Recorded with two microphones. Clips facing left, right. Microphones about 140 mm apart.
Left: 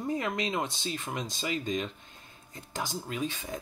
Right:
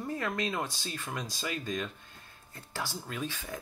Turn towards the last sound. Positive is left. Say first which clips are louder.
# left 3 dB
turn(degrees=20)  # may be behind; listen again after turning